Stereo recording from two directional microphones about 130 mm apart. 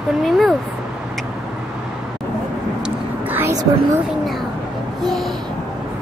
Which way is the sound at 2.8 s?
15° right (ahead or behind).